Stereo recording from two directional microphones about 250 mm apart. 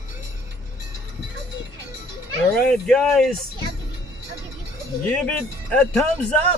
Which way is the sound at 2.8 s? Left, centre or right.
Centre.